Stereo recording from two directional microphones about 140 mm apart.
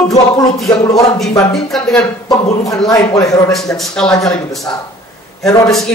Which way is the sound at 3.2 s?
25° left (ahead or behind).